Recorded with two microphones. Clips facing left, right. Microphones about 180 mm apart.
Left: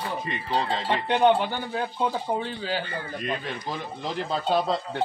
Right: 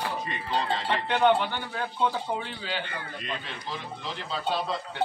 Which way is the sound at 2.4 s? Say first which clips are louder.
Left 5 dB; 40° left (ahead or behind).